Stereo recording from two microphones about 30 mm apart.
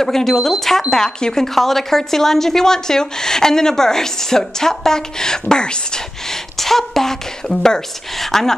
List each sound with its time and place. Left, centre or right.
0.0 s speech: centre; by 6.0 s left
6.2 s a woman's voice: centre